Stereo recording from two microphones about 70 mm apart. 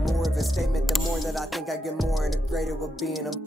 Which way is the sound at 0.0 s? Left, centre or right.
Centre.